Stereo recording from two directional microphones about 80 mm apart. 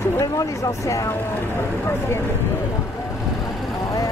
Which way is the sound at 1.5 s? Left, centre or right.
Left.